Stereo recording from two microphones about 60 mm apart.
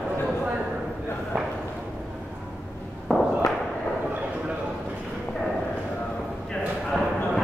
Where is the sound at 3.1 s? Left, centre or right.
Centre.